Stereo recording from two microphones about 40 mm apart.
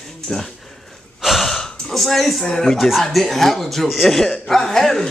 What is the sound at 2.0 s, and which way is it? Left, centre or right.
Speech, centre.